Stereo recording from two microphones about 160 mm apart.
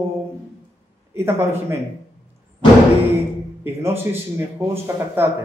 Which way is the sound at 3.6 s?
15° right (ahead or behind).